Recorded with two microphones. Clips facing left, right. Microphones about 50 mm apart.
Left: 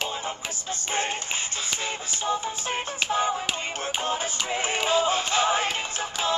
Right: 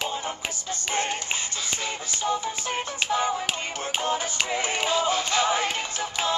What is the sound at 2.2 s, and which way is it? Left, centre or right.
Music, left.